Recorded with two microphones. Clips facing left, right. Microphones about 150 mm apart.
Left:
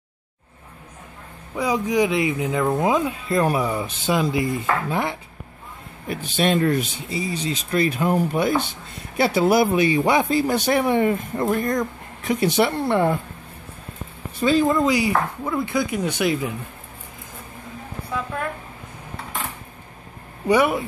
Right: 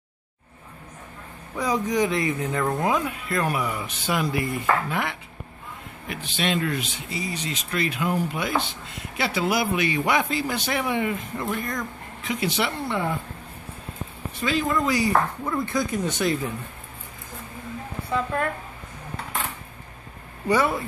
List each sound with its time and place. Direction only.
1.6 s speech: 10° left (ahead or behind); by 5.1 s 30° left (ahead or behind)
6.0 s a man's voice: 45° left (ahead or behind)
7.1 s speech: 30° left (ahead or behind)
10.3 s a man's voice: 40° left (ahead or behind)
12.8 s speech: 55° left (ahead or behind)
14.4 s speech: 30° left (ahead or behind)
14.9 s speech: 10° left (ahead or behind)
20.4 s speech: 15° left (ahead or behind)